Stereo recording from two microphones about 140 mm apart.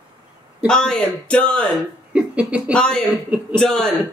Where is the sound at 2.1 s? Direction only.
10° right (ahead or behind).